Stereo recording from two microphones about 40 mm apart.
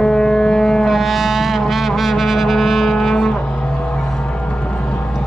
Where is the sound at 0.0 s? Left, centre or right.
Centre.